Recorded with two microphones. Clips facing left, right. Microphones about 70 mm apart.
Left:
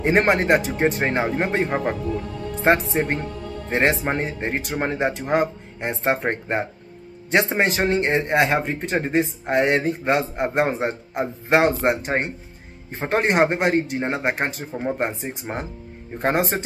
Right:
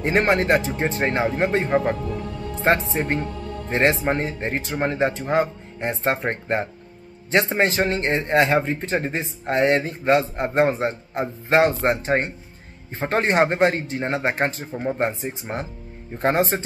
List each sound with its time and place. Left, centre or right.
0.0 s speech: centre